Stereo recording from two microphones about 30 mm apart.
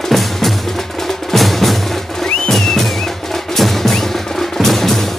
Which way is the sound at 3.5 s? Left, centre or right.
Centre.